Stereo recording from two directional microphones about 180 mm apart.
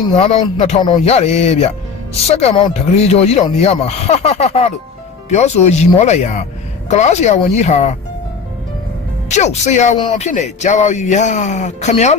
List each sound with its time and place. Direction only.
0.2 s speech: 35° left (ahead or behind)
9.3 s speech: 40° left (ahead or behind)